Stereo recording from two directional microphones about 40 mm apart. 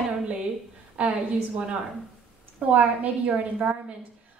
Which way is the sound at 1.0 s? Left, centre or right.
Right.